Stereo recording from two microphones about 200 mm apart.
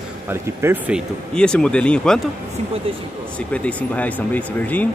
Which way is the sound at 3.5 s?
5° left (ahead or behind).